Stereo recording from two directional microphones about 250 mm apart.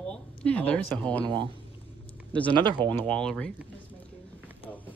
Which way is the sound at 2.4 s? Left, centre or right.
Centre.